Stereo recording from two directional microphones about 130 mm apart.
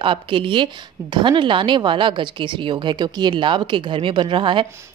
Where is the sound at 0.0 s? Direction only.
40° right (ahead or behind).